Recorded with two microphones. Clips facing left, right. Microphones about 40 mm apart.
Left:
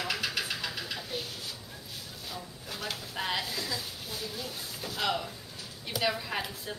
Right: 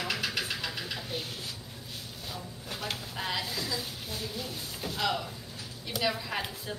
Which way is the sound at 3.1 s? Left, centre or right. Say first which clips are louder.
Left 2 dB; centre.